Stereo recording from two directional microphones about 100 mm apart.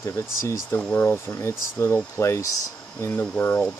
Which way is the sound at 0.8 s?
15° left (ahead or behind).